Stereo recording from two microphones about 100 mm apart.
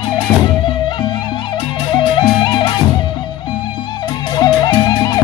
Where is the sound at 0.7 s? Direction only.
50° left (ahead or behind).